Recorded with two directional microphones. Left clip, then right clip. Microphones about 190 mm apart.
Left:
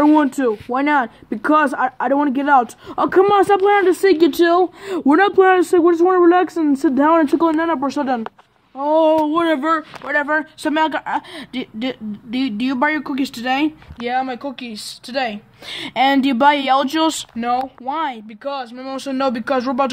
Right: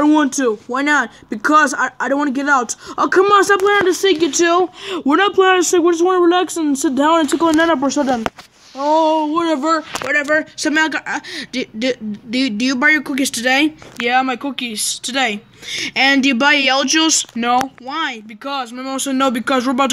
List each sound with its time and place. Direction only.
0.0 s speech: 5° right (ahead or behind)
0.7 s speech: 5° left (ahead or behind)
4.8 s speech: 15° left (ahead or behind)
7.4 s a man's voice: 20° right (ahead or behind)
9.0 s a sound: 25° left (ahead or behind)
10.2 s speech: 10° left (ahead or behind)
14.0 s speech: 10° right (ahead or behind)
14.5 s speech: 10° left (ahead or behind)
18.4 s speech: 5° left (ahead or behind)